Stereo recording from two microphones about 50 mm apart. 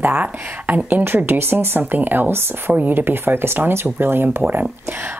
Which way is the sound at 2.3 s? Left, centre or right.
Right.